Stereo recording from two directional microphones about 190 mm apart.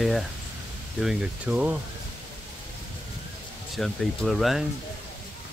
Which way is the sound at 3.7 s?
Centre (ahead or behind).